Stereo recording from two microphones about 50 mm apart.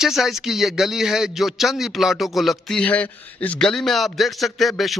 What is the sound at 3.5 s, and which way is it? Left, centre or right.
Speech, centre.